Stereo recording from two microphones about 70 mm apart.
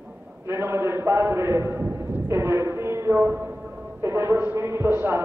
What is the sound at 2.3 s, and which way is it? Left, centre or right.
Music, right.